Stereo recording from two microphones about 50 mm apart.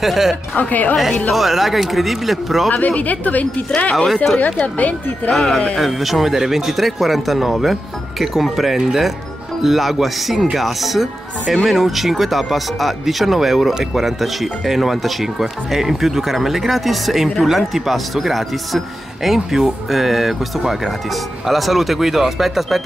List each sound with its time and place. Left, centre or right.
0.0 s speech: centre
0.6 s speech: left
1.3 s speech: centre
2.7 s speech: left
5.3 s speech: centre